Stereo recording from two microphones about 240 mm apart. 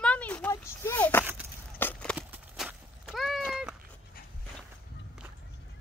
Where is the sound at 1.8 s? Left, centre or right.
Centre.